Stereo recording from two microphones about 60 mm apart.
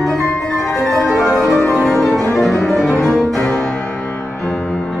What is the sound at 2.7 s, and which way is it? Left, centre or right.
Cello, centre.